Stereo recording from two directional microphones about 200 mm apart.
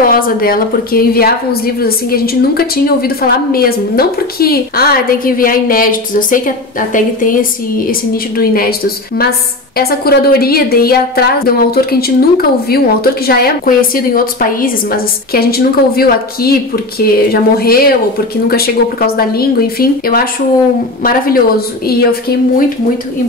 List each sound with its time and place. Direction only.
0.0 s a woman's voice: 45° left (ahead or behind)
9.8 s a woman's voice: 50° left (ahead or behind)